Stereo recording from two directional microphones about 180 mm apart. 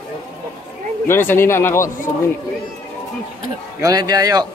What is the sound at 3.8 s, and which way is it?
Speech, 20° right (ahead or behind).